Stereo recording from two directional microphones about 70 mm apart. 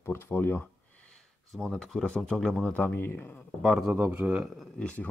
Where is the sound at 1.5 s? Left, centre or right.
Centre.